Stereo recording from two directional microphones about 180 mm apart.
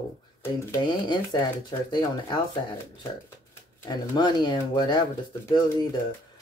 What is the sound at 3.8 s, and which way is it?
Speech, 25° left (ahead or behind).